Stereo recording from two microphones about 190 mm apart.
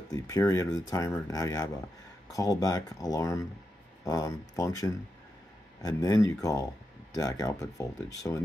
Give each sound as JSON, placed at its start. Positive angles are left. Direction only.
{"t": 0.1, "sound": "speech", "side_deg": 15}